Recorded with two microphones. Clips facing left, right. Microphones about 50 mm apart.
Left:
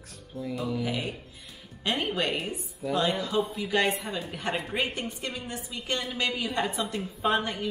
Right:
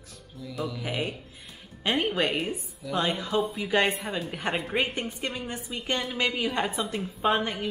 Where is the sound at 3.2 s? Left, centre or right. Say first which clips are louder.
Right 1 dB; centre.